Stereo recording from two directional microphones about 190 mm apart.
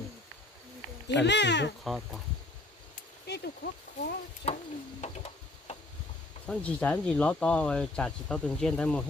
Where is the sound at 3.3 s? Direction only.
55° left (ahead or behind).